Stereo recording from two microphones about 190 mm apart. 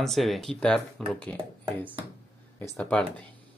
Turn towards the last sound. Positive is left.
turn(degrees=5)  # may be behind; listen again after turning